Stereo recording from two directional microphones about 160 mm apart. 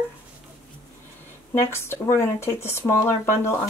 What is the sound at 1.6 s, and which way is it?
Speech, 15° left (ahead or behind).